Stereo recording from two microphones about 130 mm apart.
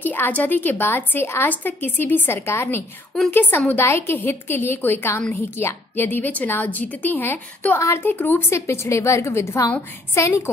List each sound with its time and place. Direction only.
0.0 s a woman's voice: 15° left (ahead or behind)